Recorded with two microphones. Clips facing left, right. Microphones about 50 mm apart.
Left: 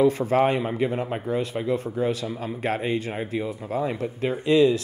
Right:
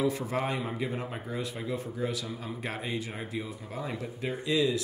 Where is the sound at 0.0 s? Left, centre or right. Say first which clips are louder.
Left 10 dB; left.